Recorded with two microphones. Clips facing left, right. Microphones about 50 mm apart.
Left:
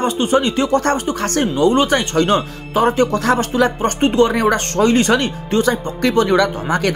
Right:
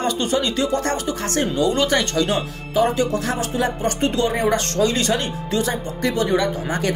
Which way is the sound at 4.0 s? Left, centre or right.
Left.